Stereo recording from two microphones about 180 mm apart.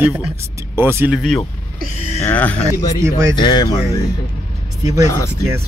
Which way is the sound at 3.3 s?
25° left (ahead or behind).